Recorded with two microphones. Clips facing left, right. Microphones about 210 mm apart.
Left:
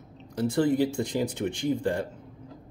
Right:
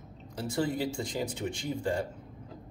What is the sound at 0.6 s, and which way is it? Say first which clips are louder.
Speech: left 6 dB; 55° left (ahead or behind).